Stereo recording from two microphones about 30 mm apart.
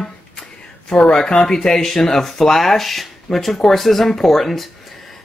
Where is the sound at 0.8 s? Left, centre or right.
Left.